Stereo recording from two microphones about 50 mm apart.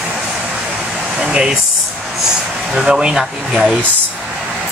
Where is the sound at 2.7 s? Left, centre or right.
Centre.